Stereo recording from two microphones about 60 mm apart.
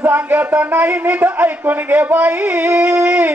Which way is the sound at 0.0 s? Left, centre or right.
Right.